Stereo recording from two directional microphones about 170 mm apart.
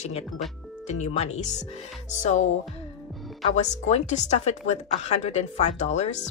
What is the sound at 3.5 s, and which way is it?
Speech, 45° left (ahead or behind).